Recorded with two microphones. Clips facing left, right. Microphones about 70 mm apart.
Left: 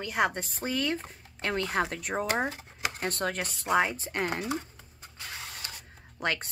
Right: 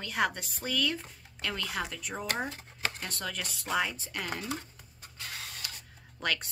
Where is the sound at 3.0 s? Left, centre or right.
Left.